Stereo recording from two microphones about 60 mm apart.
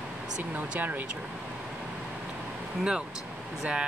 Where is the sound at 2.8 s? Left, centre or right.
Centre.